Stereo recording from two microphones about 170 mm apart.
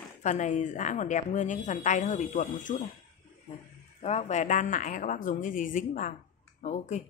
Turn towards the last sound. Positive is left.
turn(degrees=45)  # may be behind; listen again after turning